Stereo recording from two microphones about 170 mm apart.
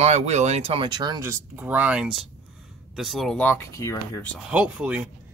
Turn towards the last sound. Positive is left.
turn(degrees=-5)  # may be behind; listen again after turning